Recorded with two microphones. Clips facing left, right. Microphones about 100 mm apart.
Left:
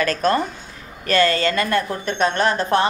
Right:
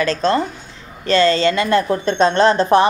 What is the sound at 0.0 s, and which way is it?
A woman's voice, 25° right (ahead or behind).